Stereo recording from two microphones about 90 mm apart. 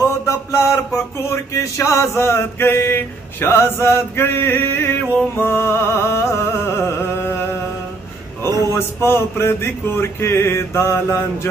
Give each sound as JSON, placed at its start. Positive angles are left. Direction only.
{"t": 0.3, "sound": "mantra", "side_deg": 30}
{"t": 8.5, "sound": "a sound", "side_deg": -40}
{"t": 8.7, "sound": "mantra", "side_deg": 25}